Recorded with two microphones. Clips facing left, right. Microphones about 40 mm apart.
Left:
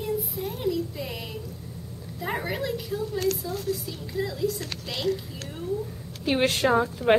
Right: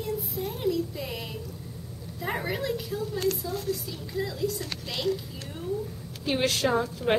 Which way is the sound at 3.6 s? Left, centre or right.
Centre.